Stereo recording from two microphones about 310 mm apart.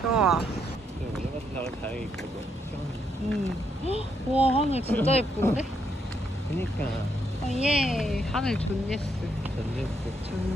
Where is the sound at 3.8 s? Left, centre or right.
Centre.